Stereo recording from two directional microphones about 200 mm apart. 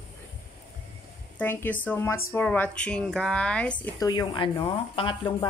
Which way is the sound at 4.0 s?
20° left (ahead or behind).